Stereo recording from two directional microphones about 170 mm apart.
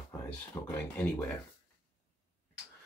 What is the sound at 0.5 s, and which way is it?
Speech, 20° left (ahead or behind).